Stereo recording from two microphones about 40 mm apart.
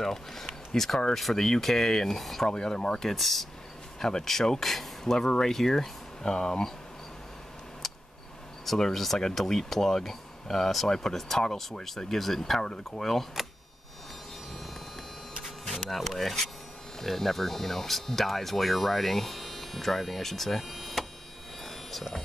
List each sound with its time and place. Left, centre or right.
0.0 s speech: centre
2.5 s speech: left
7.8 s a sound: centre
8.6 s speech: centre
12.6 s speech: centre
13.0 s speech: centre
15.4 s printer: centre
15.9 s speech: centre
21.6 s a sound: centre